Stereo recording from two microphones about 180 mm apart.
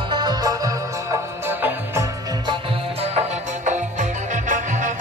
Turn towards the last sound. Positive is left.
turn(degrees=-45)  # may be behind; listen again after turning